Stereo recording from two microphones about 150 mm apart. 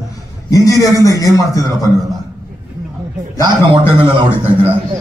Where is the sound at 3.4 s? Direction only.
35° right (ahead or behind).